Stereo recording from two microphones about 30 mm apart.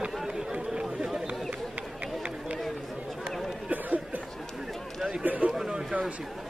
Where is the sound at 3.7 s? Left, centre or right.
Right.